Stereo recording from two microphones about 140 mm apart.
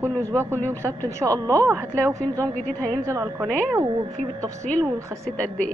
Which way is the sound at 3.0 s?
20° right (ahead or behind).